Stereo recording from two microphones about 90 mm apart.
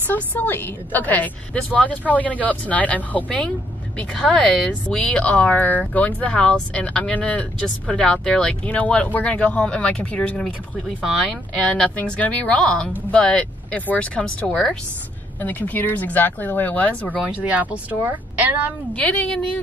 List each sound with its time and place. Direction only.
0.1 s speech: 20° left (ahead or behind)
17.3 s speech: 15° right (ahead or behind)
18.9 s speech: 15° left (ahead or behind)